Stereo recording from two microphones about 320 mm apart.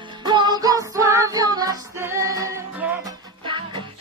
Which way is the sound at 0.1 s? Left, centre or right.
Centre.